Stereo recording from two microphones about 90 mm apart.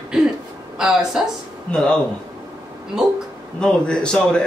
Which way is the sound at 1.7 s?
10° left (ahead or behind).